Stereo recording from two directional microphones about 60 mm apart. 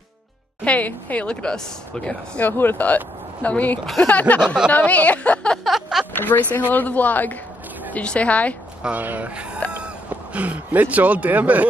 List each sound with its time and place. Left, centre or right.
0.7 s speech: left
2.4 s speech: left
5.6 s a sound: centre
6.1 s speech: left
8.9 s speech: right